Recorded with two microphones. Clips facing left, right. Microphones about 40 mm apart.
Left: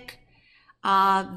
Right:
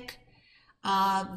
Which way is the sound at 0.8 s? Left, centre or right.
Left.